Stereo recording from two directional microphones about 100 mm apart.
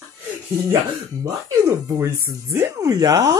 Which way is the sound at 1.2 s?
35° right (ahead or behind).